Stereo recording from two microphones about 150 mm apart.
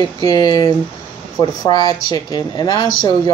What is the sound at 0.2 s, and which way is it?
Speech, 25° left (ahead or behind).